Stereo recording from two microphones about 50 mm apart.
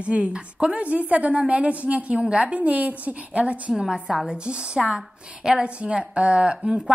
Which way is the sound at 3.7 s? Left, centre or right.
Centre.